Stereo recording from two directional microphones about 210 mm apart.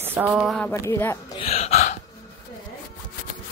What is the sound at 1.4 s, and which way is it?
Gasp, 30° left (ahead or behind).